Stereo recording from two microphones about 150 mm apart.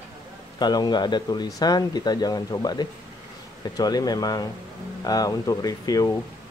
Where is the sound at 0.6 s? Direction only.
30° left (ahead or behind).